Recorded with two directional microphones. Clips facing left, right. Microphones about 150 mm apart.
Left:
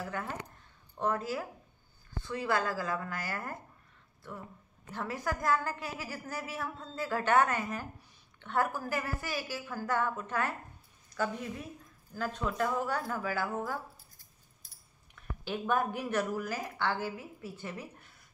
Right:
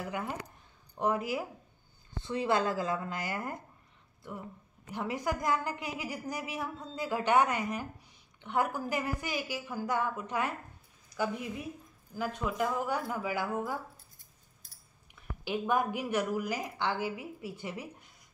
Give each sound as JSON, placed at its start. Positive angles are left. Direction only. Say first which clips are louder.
{"t": 0.0, "sound": "a woman's voice", "louder": "right 1 dB", "side_deg": -15}
{"t": 4.9, "sound": "a woman's voice", "louder": "right 2 dB", "side_deg": -15}